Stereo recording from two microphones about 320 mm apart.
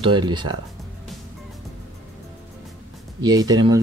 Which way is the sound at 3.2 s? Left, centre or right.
Centre.